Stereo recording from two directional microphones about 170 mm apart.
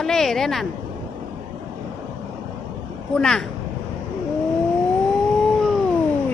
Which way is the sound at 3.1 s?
5° left (ahead or behind).